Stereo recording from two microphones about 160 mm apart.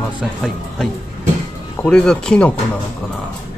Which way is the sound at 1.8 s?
5° left (ahead or behind).